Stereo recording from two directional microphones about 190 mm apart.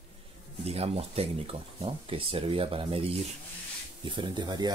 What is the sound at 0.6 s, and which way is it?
Speech, 30° right (ahead or behind).